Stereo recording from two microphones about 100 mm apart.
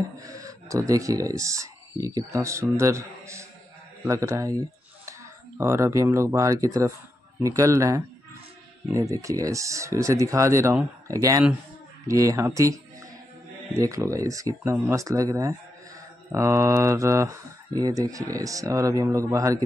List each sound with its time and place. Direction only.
0.2 s speech: 35° right (ahead or behind)
9.1 s speech: 35° right (ahead or behind)